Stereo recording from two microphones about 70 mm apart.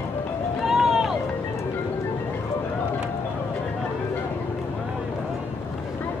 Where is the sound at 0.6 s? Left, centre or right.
Centre.